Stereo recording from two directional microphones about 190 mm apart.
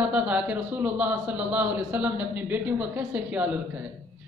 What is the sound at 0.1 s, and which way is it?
A man's voice, 5° right (ahead or behind).